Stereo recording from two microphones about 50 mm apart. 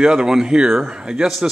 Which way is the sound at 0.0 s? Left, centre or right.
Centre.